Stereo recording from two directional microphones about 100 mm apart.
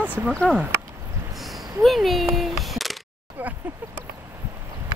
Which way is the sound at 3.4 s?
15° right (ahead or behind).